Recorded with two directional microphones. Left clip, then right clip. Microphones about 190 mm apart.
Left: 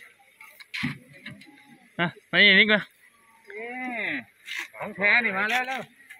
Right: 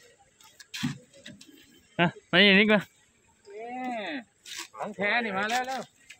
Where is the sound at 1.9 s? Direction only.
30° right (ahead or behind).